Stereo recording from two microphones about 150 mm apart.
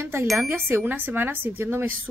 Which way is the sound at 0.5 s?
15° right (ahead or behind).